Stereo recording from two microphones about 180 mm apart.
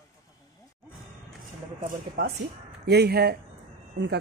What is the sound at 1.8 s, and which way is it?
Speech, 50° right (ahead or behind).